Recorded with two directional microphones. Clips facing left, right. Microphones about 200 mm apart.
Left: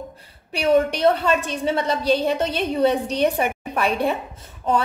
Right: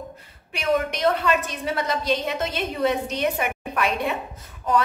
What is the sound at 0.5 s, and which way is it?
A woman's voice, 35° left (ahead or behind).